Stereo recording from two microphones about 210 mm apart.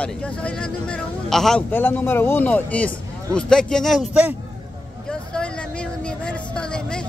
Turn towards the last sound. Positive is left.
turn(degrees=5)  # may be behind; listen again after turning